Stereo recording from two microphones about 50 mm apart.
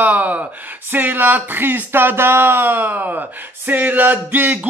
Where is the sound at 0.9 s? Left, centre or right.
Right.